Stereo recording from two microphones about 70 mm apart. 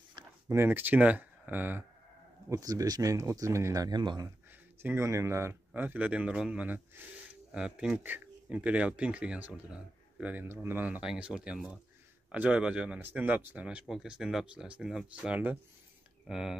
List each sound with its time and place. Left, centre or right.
0.2 s a sound: right
0.5 s speech: right
2.5 s speech: right
3.8 s speech: right
4.9 s speech: right
5.8 s speech: right
7.9 s speech: right
10.4 s speech: right
11.0 s speech: centre
12.3 s speech: centre
13.0 s speech: right
13.6 s speech: centre
16.3 s speech: centre